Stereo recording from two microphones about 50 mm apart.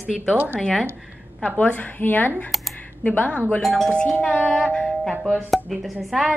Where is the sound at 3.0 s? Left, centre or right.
Left.